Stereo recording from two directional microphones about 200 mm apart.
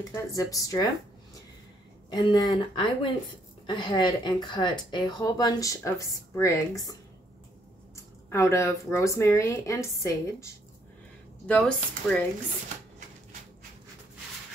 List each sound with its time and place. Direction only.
0.1 s speech: 15° left (ahead or behind)
2.0 s speech: 20° left (ahead or behind)
11.4 s speech: 5° left (ahead or behind)